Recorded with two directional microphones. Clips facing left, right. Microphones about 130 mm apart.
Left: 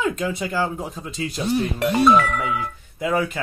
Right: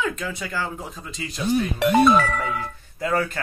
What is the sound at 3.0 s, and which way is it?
Speech, 15° left (ahead or behind).